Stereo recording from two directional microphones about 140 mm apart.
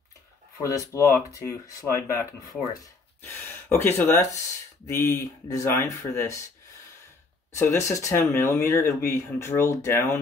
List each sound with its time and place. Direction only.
0.6 s speech: 20° left (ahead or behind)
7.5 s speech: 20° left (ahead or behind)